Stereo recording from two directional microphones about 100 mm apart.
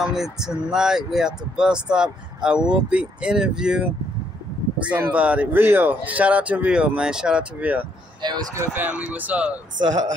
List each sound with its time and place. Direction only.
0.0 s speech: 5° right (ahead or behind)
8.2 s speech: 45° right (ahead or behind)
8.7 s speech: 15° right (ahead or behind)